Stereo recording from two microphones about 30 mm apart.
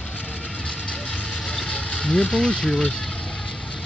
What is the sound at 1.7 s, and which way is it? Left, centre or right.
Vehicle, left.